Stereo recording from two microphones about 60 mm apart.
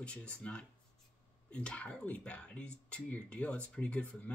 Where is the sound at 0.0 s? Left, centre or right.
Centre.